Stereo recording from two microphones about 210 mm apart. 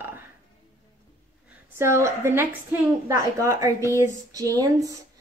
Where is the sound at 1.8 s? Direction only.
15° right (ahead or behind).